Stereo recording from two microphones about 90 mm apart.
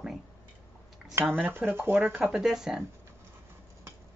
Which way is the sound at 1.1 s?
20° right (ahead or behind).